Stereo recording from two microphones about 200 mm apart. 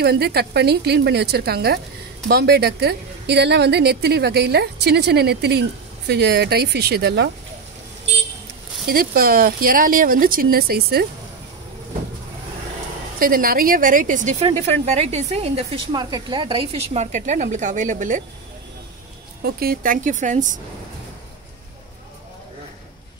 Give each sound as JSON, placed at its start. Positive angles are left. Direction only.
{"t": 0.0, "sound": "a woman's voice", "side_deg": -50}
{"t": 8.8, "sound": "speech", "side_deg": -50}
{"t": 13.2, "sound": "speech", "side_deg": -45}
{"t": 19.4, "sound": "speech", "side_deg": -50}